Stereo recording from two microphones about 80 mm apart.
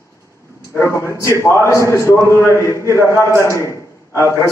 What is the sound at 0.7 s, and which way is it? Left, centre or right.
A man's voice, left.